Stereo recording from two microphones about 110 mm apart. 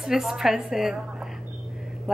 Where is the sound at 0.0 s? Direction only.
5° right (ahead or behind).